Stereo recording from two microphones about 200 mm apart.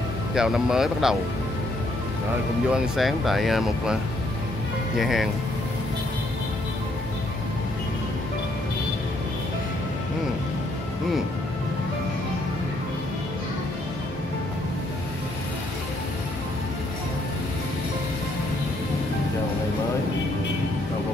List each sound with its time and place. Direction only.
0.3 s speech: 5° right (ahead or behind)
2.7 s speech: centre (ahead or behind)